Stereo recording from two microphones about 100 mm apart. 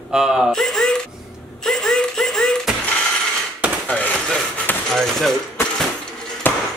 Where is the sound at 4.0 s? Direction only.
15° left (ahead or behind).